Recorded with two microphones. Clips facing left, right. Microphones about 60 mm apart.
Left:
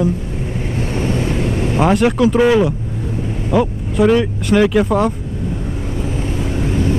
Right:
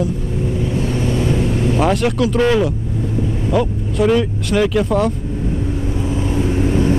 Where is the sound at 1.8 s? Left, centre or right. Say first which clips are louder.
Left 5 dB; centre.